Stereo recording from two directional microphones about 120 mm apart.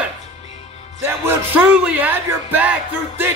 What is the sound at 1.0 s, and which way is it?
Speech, 15° right (ahead or behind).